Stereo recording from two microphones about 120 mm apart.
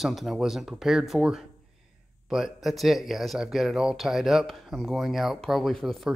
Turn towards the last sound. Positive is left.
turn(degrees=0)  # may be behind; listen again after turning